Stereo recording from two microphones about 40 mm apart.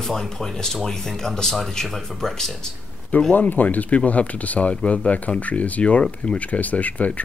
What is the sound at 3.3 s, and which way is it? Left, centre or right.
Speech, left.